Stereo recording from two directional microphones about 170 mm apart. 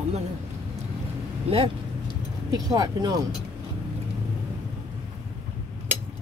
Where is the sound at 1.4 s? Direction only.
30° right (ahead or behind).